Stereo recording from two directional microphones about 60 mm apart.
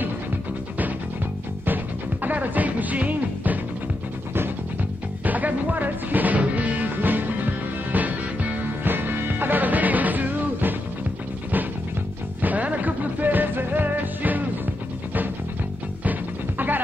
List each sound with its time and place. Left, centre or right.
2.2 s music: right
5.2 s music: right
12.4 s music: right
16.0 s music: right